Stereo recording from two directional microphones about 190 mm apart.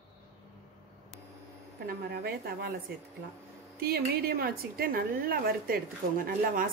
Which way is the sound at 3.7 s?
55° right (ahead or behind).